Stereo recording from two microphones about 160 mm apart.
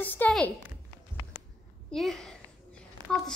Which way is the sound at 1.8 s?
Centre (ahead or behind).